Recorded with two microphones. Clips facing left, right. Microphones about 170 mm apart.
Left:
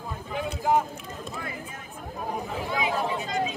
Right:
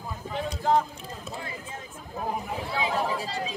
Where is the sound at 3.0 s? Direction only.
35° right (ahead or behind).